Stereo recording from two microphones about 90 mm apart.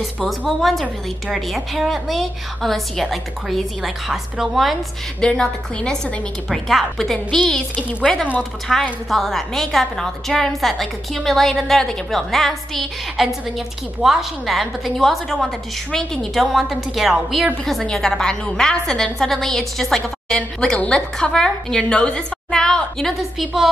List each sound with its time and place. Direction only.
0.5 s a woman's voice: centre (ahead or behind)